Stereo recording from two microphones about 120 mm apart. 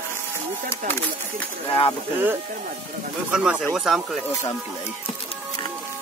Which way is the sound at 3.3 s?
10° right (ahead or behind).